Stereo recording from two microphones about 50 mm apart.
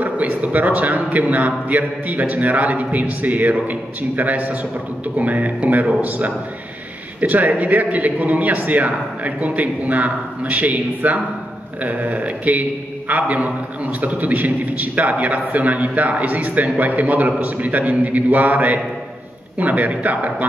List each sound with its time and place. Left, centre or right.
0.0 s a man's voice: right